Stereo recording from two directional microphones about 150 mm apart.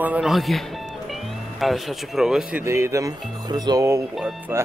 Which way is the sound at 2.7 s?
20° right (ahead or behind).